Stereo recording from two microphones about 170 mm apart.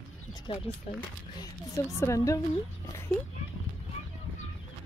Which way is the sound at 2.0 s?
20° left (ahead or behind).